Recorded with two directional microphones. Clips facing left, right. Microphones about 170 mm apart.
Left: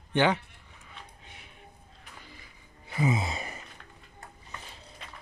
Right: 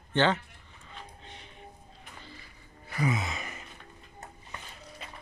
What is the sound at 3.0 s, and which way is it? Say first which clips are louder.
Gasp: left 2 dB; 30° left (ahead or behind).